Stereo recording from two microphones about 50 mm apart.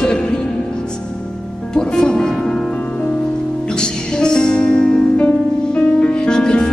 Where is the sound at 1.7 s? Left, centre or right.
Centre.